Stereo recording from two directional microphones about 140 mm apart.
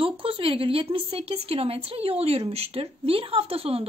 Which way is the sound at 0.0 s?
40° right (ahead or behind).